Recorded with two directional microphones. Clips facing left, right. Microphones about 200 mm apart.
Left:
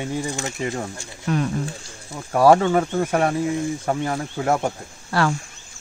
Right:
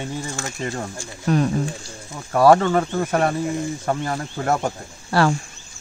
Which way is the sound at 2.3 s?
10° left (ahead or behind).